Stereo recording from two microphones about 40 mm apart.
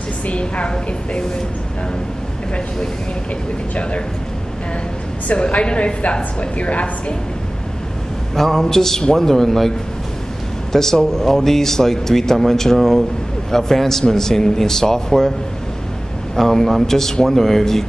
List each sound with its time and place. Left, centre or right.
0.3 s a woman's voice: left
5.3 s a woman's voice: left
8.4 s speech: centre
16.3 s speech: centre